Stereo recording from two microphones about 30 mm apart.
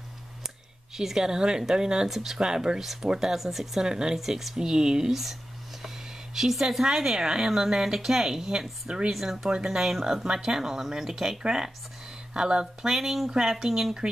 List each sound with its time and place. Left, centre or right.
0.9 s speech: centre
2.0 s a woman's voice: centre
2.8 s a woman's voice: centre
3.3 s a woman's voice: centre
3.8 s speech: right
4.2 s a woman's voice: centre
4.6 s speech: right
5.1 s a sound: centre
6.5 s a woman's voice: centre
9.5 s a woman's voice: right
12.8 s a woman's voice: centre